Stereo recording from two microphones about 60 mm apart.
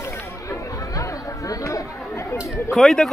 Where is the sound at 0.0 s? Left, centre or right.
Left.